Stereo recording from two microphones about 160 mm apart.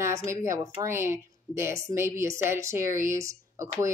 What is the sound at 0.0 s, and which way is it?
A woman's voice, 20° right (ahead or behind).